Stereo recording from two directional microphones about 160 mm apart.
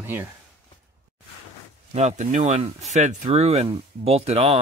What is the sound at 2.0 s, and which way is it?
Speech, 45° right (ahead or behind).